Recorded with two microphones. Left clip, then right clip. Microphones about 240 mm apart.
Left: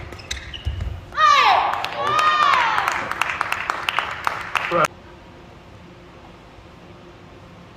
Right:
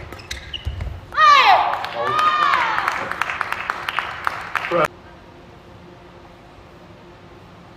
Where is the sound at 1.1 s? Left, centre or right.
Centre.